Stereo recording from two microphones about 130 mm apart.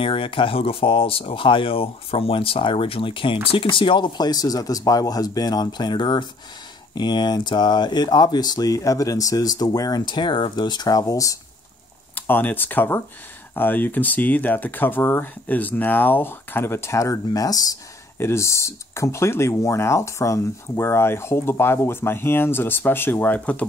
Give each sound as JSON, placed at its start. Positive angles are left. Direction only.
{"t": 0.0, "sound": "speech", "side_deg": 40}
{"t": 12.2, "sound": "speech", "side_deg": 15}